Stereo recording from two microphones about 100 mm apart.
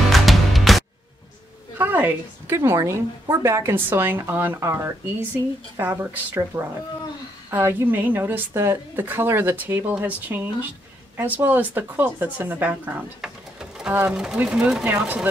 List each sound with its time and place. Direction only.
0.1 s music: centre (ahead or behind)
1.8 s a woman's voice: 20° right (ahead or behind)
2.5 s speech: 30° right (ahead or behind)
13.2 s speech: 5° right (ahead or behind)